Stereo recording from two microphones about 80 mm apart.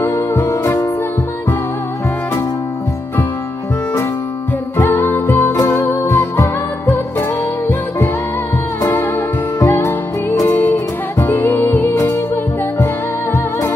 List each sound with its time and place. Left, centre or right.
0.0 s music: left
5.0 s music: left
9.6 s music: left
10.5 s music: left